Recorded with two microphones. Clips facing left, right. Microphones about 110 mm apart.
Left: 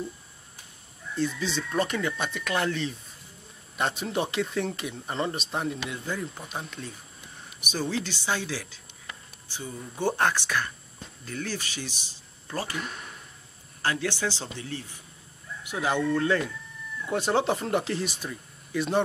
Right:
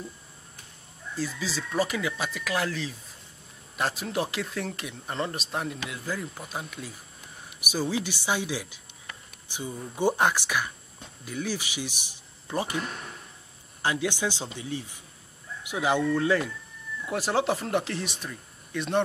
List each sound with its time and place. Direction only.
1.1 s speech: 5° right (ahead or behind)
13.8 s speech: 15° right (ahead or behind); by 19.0 s centre (ahead or behind)